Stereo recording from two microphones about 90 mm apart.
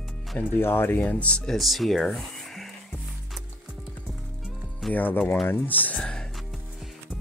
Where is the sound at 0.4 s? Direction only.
25° left (ahead or behind).